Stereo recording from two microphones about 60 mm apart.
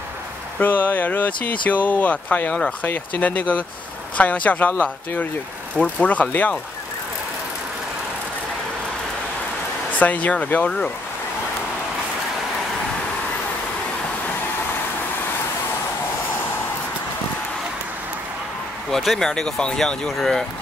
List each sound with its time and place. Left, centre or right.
0.6 s speech: left
9.9 s speech: left
18.9 s speech: centre